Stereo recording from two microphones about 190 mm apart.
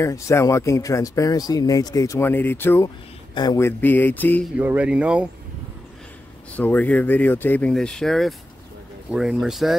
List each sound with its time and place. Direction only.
0.0 s speech: 15° left (ahead or behind)
4.6 s speech: 10° right (ahead or behind)
6.5 s speech: 10° left (ahead or behind)